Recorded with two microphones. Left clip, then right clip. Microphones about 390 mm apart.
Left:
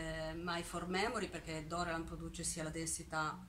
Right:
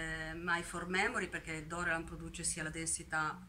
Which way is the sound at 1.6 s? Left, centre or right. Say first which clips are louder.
Right 3 dB; centre.